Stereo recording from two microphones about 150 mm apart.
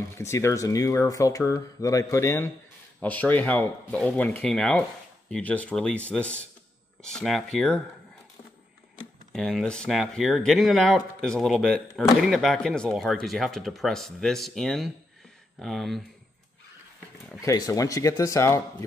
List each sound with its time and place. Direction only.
0.2 s speech: 20° left (ahead or behind)
9.3 s speech: 5° left (ahead or behind)
17.4 s speech: 25° left (ahead or behind)